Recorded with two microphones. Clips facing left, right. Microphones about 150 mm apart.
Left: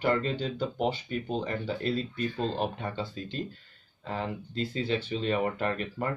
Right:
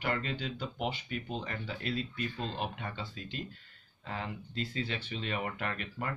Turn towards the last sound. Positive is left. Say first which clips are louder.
# left 7 dB
turn(degrees=40)  # may be behind; listen again after turning